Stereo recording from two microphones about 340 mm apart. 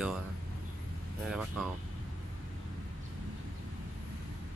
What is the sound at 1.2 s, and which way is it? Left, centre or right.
Speech, centre.